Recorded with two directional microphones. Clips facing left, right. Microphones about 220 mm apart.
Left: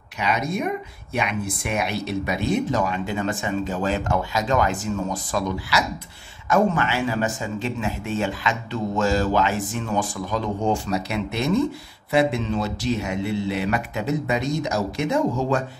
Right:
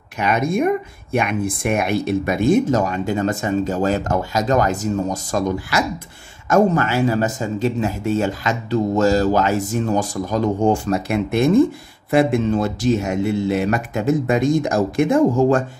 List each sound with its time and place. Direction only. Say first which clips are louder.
0.2 s speech: right 6 dB; 50° right (ahead or behind)